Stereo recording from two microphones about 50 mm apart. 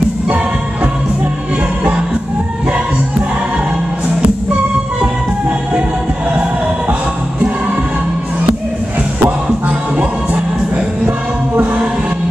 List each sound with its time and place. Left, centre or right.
9.2 s music: right